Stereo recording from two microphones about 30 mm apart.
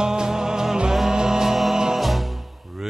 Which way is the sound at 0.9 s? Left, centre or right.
Centre.